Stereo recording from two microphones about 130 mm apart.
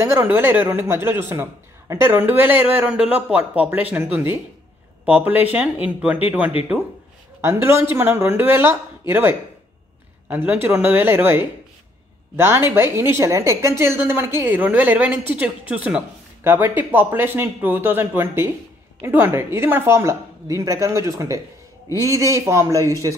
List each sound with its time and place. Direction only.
0.0 s a man's voice: 15° right (ahead or behind)
10.3 s a man's voice: 15° right (ahead or behind)